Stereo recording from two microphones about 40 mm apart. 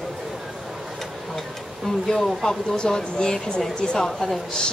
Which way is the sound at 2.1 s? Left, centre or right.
Centre.